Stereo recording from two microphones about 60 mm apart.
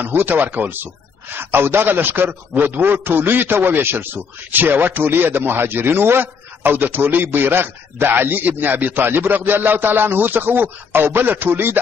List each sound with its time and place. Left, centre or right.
0.0 s a man's voice: right